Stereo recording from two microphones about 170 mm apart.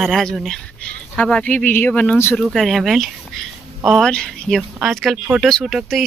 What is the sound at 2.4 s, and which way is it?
Speech, centre (ahead or behind).